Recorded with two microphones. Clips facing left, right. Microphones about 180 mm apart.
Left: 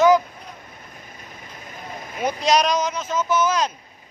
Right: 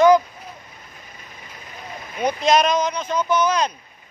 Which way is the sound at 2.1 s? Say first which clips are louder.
Right 2 dB; centre (ahead or behind).